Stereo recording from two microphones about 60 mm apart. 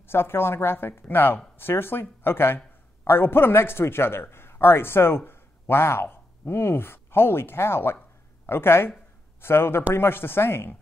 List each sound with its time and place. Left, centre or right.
0.0 s a man's voice: left